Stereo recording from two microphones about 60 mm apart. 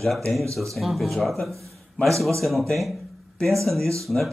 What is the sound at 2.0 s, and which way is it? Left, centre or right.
Speech, centre.